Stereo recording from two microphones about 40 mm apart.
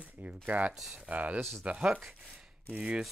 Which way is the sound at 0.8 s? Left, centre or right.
Centre.